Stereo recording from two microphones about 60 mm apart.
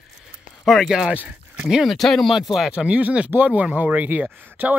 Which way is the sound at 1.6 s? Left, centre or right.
Centre.